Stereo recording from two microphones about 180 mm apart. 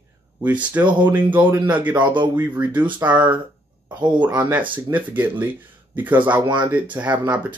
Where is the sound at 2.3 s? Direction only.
10° right (ahead or behind).